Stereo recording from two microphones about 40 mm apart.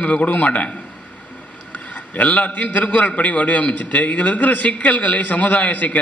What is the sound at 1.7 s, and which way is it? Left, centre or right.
A man's voice, left.